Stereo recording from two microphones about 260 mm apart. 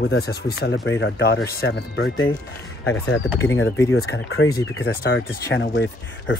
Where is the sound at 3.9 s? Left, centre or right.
Left.